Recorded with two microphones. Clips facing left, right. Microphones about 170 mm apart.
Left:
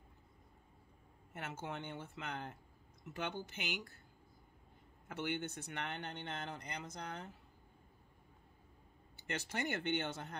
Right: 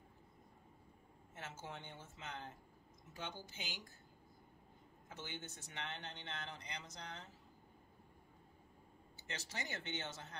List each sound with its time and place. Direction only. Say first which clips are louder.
1.3 s speech: left 6 dB; 60° left (ahead or behind)
5.0 s speech: left 10 dB; 65° left (ahead or behind)
9.3 s speech: left 8 dB; 60° left (ahead or behind)